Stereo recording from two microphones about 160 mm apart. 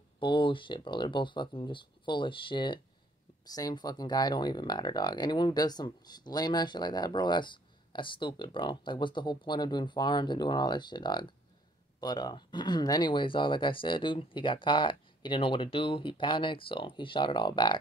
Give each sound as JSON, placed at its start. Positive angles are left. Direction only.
{"t": 0.2, "sound": "speech", "side_deg": 30}